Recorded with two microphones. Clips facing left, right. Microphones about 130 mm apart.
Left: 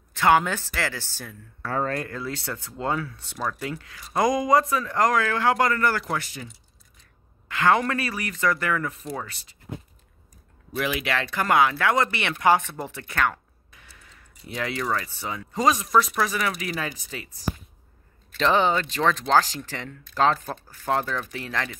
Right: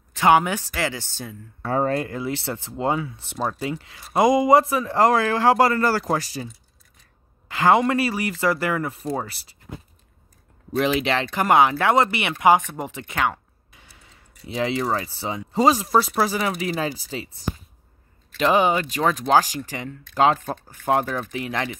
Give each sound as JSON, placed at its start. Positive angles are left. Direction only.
{"t": 0.1, "sound": "speech", "side_deg": -15}
{"t": 10.8, "sound": "speech", "side_deg": -25}
{"t": 13.7, "sound": "a sound", "side_deg": -25}
{"t": 14.5, "sound": "speech", "side_deg": -25}
{"t": 18.4, "sound": "speech", "side_deg": -10}